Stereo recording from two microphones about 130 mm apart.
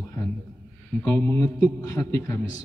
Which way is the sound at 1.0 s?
20° left (ahead or behind).